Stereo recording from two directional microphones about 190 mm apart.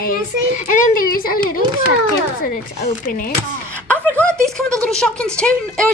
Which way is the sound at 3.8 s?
5° left (ahead or behind).